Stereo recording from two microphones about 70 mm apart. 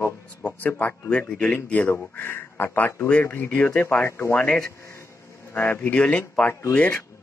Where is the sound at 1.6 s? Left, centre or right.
Left.